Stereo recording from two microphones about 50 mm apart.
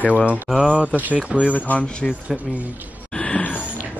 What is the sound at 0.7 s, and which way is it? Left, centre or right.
Speech, right.